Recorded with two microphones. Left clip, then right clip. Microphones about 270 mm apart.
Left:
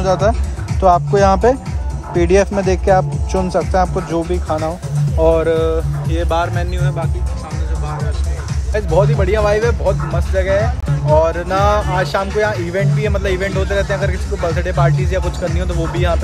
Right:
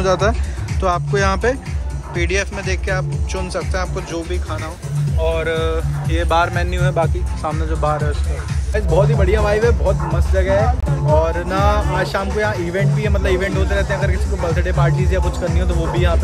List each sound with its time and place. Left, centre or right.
0.0 s speech: centre
8.7 s speech: centre